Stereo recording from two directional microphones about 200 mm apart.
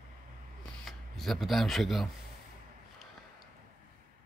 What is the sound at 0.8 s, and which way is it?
Speech, centre (ahead or behind).